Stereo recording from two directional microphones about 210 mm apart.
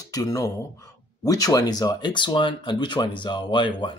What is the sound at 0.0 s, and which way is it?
Speech, 15° left (ahead or behind).